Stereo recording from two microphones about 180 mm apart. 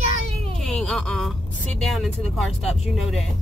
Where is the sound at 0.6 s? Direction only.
Centre (ahead or behind).